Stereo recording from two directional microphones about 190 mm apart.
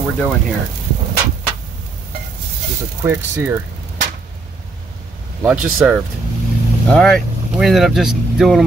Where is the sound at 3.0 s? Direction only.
10° right (ahead or behind).